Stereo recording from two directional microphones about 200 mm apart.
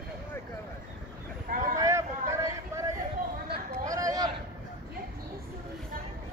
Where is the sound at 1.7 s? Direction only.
15° right (ahead or behind).